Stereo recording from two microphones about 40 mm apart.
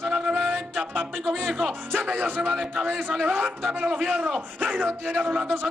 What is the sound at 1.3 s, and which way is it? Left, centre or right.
Speech, centre.